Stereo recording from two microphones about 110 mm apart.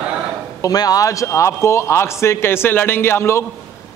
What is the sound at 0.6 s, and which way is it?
A man's voice, 35° left (ahead or behind).